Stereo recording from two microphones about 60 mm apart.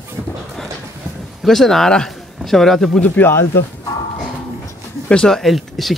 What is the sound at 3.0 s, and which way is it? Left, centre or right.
Speech, left.